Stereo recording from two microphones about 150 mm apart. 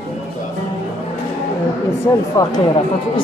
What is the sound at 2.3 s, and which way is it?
Speech, 30° left (ahead or behind).